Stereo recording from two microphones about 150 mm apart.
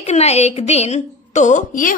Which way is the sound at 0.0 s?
45° left (ahead or behind).